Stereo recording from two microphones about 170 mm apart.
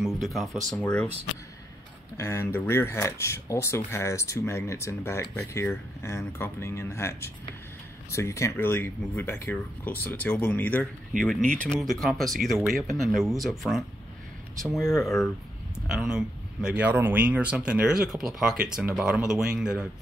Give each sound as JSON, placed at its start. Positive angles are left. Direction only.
{"t": 0.0, "sound": "speech", "side_deg": 0}
{"t": 2.1, "sound": "speech", "side_deg": 15}